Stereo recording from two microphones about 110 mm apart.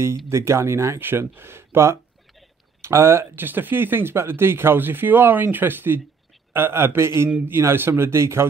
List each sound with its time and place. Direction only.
0.3 s speech: 25° right (ahead or behind)